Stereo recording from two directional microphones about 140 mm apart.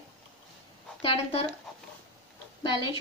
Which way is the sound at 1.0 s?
45° left (ahead or behind).